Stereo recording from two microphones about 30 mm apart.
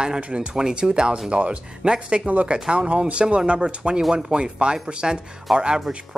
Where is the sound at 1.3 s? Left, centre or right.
Right.